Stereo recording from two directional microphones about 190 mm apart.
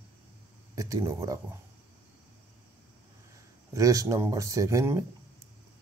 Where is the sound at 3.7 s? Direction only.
15° right (ahead or behind).